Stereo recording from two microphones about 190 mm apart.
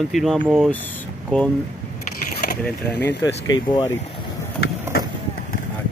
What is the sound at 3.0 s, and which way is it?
Speech, 65° left (ahead or behind).